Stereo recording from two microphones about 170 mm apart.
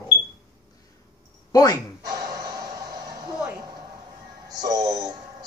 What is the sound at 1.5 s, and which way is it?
Speech, 20° left (ahead or behind).